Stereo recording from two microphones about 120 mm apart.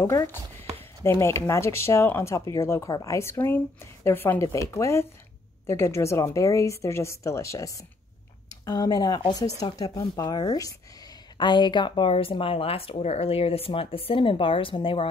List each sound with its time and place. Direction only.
0.0 s speech: 20° left (ahead or behind); by 15.0 s 50° left (ahead or behind)